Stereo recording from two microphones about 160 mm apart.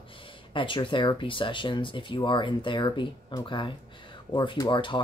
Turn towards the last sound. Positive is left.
turn(degrees=30)  # may be behind; listen again after turning